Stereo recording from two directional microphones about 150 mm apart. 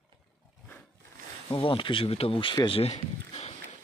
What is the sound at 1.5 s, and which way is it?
Speech, 35° left (ahead or behind).